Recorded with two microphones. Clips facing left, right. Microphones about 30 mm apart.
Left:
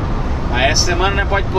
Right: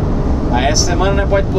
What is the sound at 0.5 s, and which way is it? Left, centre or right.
Speech, left.